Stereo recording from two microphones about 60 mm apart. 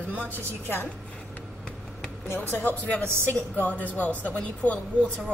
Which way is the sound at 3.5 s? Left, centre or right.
Left.